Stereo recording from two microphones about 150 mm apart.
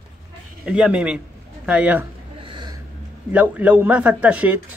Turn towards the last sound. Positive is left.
turn(degrees=-10)  # may be behind; listen again after turning